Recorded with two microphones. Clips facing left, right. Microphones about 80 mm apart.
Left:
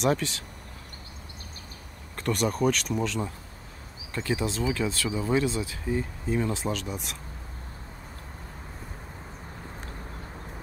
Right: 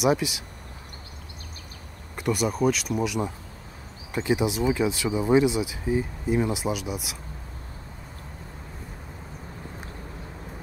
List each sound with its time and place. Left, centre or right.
0.0 s speech: centre
2.1 s speech: centre